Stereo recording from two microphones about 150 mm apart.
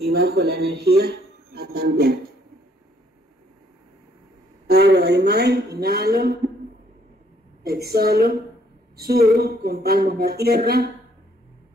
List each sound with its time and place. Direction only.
0.1 s speech: 90° right
4.6 s a woman's voice: 90° right
7.6 s a woman's voice: 90° right